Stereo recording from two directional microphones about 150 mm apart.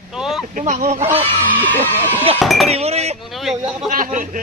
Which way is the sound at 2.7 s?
45° right (ahead or behind).